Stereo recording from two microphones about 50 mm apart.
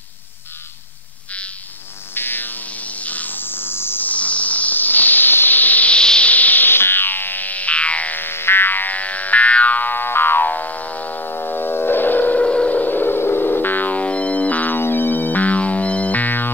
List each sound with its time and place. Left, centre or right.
2.1 s music: left
4.0 s a sound: left
5.9 s a sound: centre
6.3 s music: left
8.2 s music: left
12.4 s vehicle: left
12.7 s music: left
14.8 s music: left